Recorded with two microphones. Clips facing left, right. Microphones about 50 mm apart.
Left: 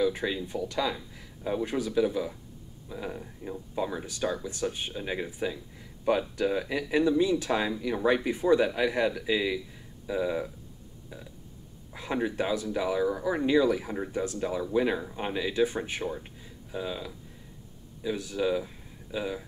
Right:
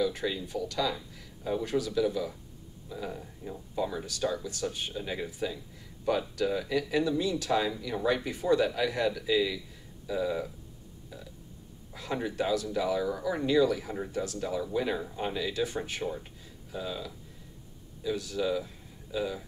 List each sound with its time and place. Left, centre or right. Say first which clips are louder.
0.0 s speech: left 2 dB; centre
11.9 s speech: left 3 dB; centre